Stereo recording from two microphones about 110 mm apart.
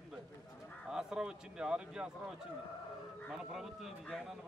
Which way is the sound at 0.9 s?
5° right (ahead or behind).